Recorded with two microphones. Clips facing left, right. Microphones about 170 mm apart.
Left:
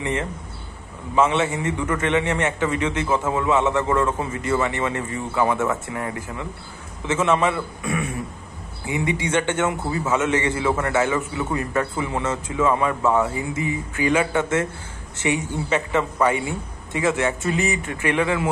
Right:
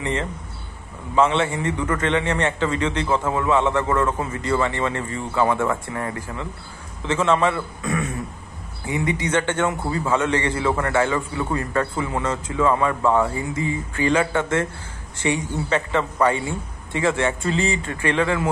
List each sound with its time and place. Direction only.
0.0 s a man's voice: 20° left (ahead or behind)
7.1 s a man's voice: 20° left (ahead or behind)
8.8 s a man's voice: 20° left (ahead or behind)
13.0 s a man's voice: 5° left (ahead or behind)
13.4 s a man's voice: 20° left (ahead or behind)